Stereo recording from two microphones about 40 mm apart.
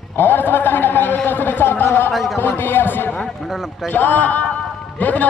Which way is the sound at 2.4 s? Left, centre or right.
Left.